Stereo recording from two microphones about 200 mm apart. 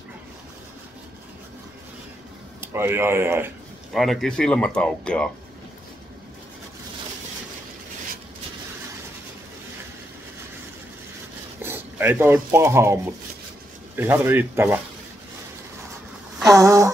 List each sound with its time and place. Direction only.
2.6 s speech: 10° right (ahead or behind)
3.9 s speech: centre (ahead or behind)
11.6 s speech: 10° right (ahead or behind)
16.4 s a sound: 15° right (ahead or behind)